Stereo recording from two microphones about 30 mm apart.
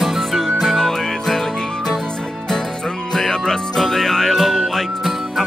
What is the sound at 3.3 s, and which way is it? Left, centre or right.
Music, left.